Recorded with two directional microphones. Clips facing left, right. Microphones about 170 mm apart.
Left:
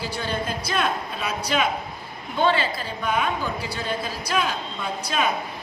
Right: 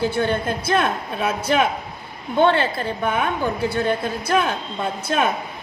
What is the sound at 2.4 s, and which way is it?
A woman's voice, 60° right (ahead or behind).